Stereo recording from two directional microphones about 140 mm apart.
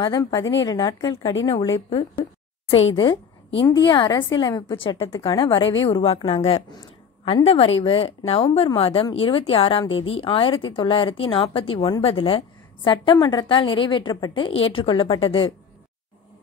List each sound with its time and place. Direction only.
0.0 s a woman's voice: 25° left (ahead or behind)
1.9 s a woman's voice: 40° left (ahead or behind)
3.6 s a woman's voice: 30° left (ahead or behind)